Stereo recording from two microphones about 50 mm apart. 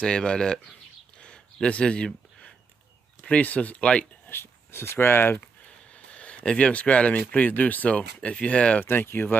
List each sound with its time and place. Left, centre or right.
0.0 s speech: centre
1.2 s a sound: centre
3.3 s speech: left
4.3 s speech: left
5.9 s speech: left
8.8 s speech: left